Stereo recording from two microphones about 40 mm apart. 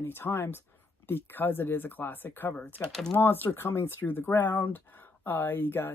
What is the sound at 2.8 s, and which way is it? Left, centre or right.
Speech, left.